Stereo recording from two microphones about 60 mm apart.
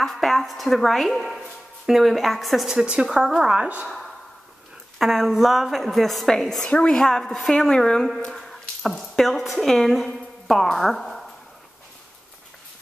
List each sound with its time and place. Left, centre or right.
0.0 s a woman's voice: centre
3.8 s a woman's voice: centre
6.6 s a woman's voice: centre